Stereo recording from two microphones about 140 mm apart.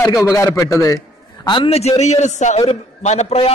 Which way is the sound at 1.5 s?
40° left (ahead or behind).